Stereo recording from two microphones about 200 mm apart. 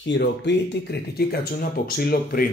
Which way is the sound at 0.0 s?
60° left (ahead or behind).